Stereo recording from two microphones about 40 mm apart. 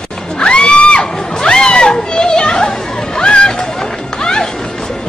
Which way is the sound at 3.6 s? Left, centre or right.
Centre.